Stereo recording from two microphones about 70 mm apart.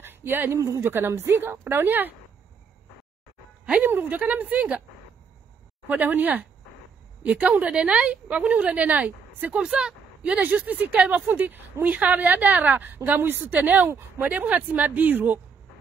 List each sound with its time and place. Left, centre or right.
0.0 s a sound: right
0.6 s speech: right
3.8 s a woman's voice: right
5.9 s a woman's voice: right
10.4 s a woman's voice: right